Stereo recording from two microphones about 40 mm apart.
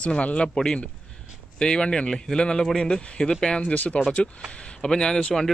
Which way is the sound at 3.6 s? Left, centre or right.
Left.